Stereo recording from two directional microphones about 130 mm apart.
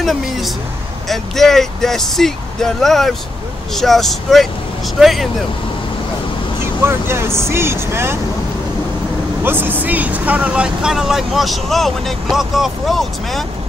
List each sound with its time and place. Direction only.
1.0 s speech: centre (ahead or behind)
6.6 s speech: 20° right (ahead or behind)
9.4 s speech: 15° right (ahead or behind); by 13.5 s centre (ahead or behind)